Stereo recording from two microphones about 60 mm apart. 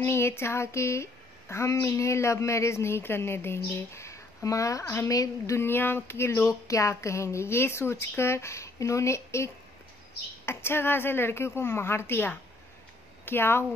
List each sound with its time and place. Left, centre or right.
0.0 s a woman's voice: left
5.6 s a sound: left
6.7 s a woman's voice: left